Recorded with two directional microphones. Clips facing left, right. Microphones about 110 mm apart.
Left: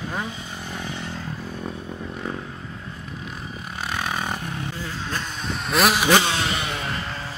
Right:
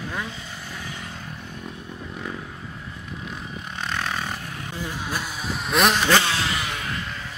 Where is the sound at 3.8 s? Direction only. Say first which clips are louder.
Left 1 dB; 10° left (ahead or behind).